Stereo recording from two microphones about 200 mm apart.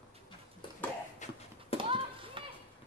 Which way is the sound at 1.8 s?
25° right (ahead or behind).